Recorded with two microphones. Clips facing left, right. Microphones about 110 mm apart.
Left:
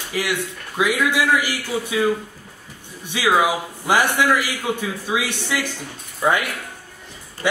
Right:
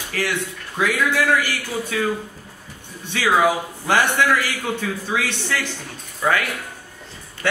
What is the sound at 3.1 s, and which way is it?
A man's voice, 10° left (ahead or behind).